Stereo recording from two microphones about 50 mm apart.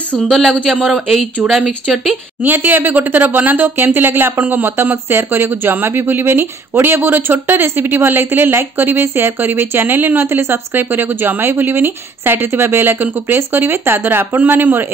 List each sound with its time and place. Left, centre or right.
0.3 s speech: centre
2.4 s speech: right
10.2 s speech: right